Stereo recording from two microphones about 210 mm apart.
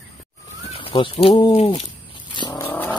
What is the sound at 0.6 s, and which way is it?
Speech, 25° left (ahead or behind).